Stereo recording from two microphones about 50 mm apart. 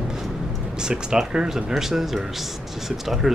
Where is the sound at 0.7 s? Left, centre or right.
Centre.